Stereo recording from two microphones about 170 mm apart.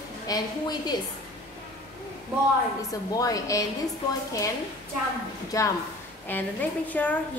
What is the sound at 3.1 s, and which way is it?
Speech, 20° left (ahead or behind).